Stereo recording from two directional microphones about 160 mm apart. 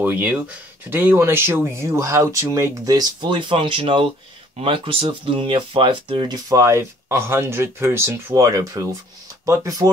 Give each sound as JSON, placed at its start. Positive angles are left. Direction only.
{"t": 0.0, "sound": "speech", "side_deg": -10}